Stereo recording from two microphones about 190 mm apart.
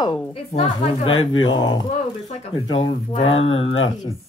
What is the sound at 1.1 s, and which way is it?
Speech, 90° left.